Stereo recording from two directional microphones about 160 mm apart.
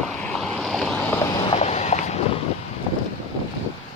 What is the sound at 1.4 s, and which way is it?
Vehicle, 40° left (ahead or behind).